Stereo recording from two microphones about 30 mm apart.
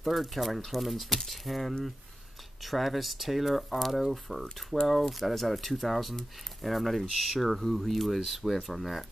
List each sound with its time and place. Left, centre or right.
0.0 s speech: centre
8.2 s speech: centre